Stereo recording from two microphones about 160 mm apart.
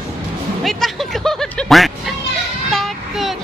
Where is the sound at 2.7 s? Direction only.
Centre (ahead or behind).